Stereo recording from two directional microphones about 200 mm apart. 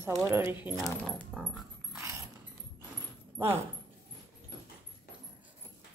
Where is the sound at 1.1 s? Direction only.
Centre (ahead or behind).